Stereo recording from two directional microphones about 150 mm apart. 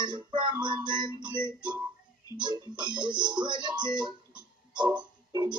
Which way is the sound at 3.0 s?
30° right (ahead or behind).